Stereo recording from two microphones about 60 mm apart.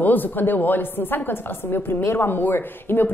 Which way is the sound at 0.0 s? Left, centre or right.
Left.